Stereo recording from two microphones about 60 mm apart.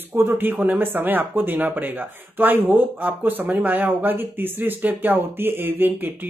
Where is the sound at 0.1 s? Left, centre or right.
Right.